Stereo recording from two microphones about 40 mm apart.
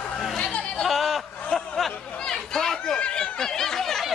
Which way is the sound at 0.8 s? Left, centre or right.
Centre.